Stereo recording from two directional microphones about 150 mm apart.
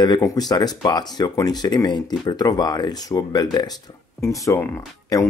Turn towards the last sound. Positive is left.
turn(degrees=25)  # may be behind; listen again after turning